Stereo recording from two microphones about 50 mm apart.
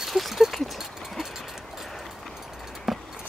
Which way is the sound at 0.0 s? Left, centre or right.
Centre.